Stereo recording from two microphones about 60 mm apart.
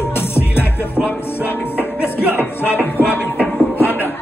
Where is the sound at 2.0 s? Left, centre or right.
Centre.